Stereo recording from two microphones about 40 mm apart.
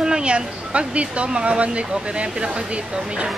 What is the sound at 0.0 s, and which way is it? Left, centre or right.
Speech, right.